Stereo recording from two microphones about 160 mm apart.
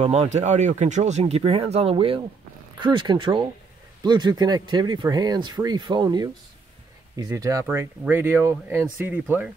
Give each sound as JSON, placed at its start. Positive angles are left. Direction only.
{"t": 0.0, "sound": "speech", "side_deg": -45}